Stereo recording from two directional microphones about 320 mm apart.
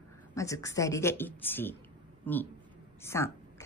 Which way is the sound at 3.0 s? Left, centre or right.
Centre.